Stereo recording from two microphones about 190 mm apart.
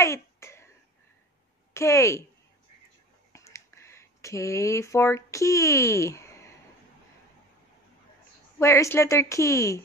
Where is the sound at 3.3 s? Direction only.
15° left (ahead or behind).